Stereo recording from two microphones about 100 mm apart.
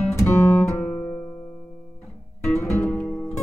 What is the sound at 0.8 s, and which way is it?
Music, 15° left (ahead or behind).